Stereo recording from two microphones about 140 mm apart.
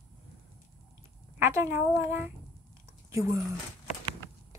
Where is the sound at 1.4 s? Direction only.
20° right (ahead or behind).